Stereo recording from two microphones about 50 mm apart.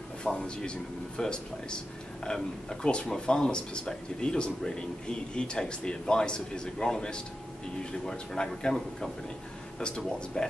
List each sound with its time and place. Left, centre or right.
0.2 s speech: centre